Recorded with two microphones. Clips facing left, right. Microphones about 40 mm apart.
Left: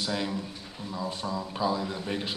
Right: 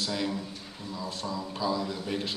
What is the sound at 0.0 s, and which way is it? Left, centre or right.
A man's voice, centre.